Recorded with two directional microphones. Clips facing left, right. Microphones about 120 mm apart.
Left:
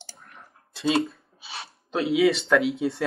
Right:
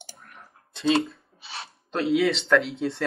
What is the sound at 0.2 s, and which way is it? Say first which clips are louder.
Speech: even; centre (ahead or behind).